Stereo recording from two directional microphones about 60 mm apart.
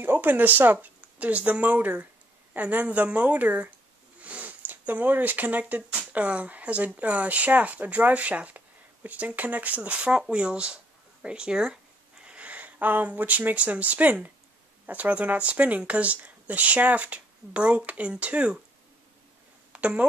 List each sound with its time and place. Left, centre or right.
0.0 s speech: right; by 11.8 s centre
12.3 s speech: right
19.7 s a sound: right